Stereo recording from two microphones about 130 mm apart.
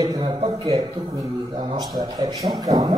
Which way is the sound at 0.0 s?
35° right (ahead or behind).